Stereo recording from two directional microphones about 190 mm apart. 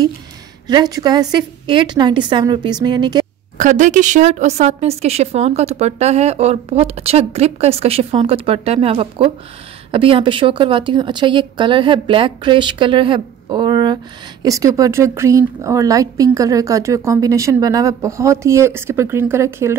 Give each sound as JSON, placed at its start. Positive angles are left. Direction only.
{"t": 0.7, "sound": "a woman's voice", "side_deg": -20}
{"t": 3.5, "sound": "a woman's voice", "side_deg": -40}